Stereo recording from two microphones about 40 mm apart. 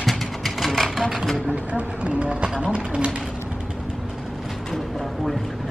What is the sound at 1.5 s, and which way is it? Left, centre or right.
Speech, right.